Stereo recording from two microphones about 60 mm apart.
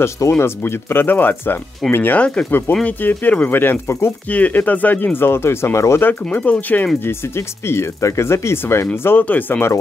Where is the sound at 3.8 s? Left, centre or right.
Left.